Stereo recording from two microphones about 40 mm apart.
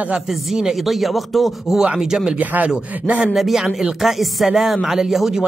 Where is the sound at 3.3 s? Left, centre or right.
Centre.